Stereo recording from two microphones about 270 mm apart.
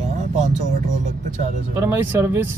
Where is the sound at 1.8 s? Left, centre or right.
Centre.